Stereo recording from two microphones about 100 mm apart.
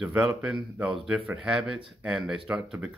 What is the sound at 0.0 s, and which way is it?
Speech, 10° right (ahead or behind).